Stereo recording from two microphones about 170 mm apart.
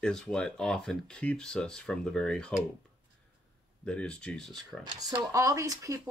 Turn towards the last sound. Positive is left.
turn(degrees=-20)  # may be behind; listen again after turning